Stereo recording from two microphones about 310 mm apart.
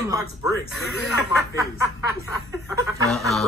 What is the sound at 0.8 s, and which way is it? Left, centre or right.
Speech, centre.